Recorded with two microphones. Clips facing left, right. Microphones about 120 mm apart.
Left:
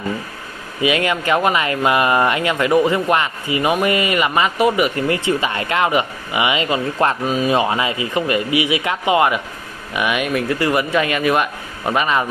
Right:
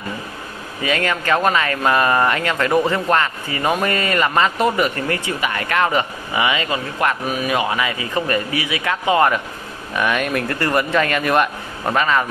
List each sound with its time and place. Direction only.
0.8 s a man's voice: 15° left (ahead or behind)
12.0 s a man's voice: 20° left (ahead or behind)